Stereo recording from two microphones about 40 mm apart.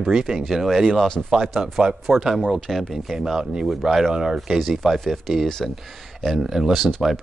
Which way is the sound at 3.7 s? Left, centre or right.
Centre.